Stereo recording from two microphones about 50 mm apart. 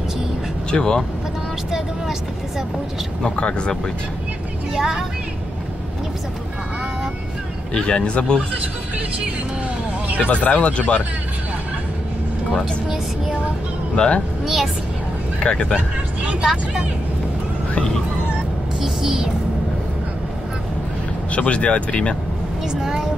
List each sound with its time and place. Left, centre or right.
0.7 s speech: centre
3.2 s speech: centre
4.7 s speech: centre
7.7 s speech: centre
10.1 s speech: left
13.9 s speech: centre
14.4 s a woman's voice: centre
15.5 s speech: left
16.3 s speech: centre
18.8 s speech: centre
21.3 s speech: left
22.7 s speech: centre